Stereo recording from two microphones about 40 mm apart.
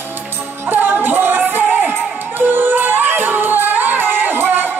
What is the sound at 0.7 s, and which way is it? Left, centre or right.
Music, right.